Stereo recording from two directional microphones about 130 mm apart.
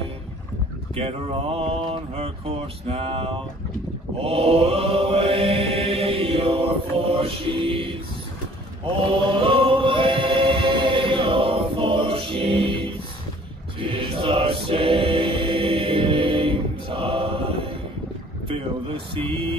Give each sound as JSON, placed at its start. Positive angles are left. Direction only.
{"t": 0.9, "sound": "mantra", "side_deg": -50}
{"t": 8.9, "sound": "choir", "side_deg": -40}
{"t": 18.5, "sound": "speech", "side_deg": -45}